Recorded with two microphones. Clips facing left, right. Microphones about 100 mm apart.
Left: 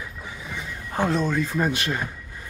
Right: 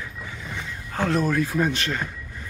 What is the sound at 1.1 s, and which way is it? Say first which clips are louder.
Speech: right 3 dB; 5° right (ahead or behind).